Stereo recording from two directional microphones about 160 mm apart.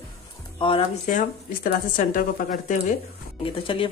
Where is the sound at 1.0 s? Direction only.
60° left (ahead or behind).